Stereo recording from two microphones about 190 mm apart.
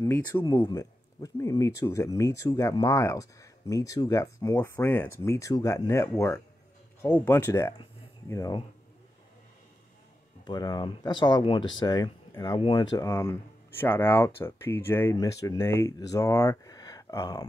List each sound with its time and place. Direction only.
0.0 s speech: 15° left (ahead or behind)
10.4 s speech: 20° left (ahead or behind)